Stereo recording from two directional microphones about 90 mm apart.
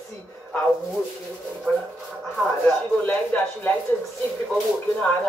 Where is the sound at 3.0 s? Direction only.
20° left (ahead or behind).